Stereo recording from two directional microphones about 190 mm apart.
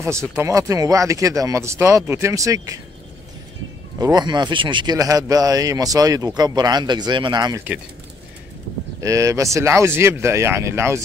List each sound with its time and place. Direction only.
0.0 s speech: 15° right (ahead or behind)
4.0 s speech: 20° right (ahead or behind)
9.0 s speech: 15° right (ahead or behind)